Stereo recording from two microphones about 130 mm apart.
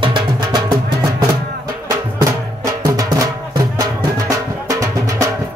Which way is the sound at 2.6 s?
25° right (ahead or behind).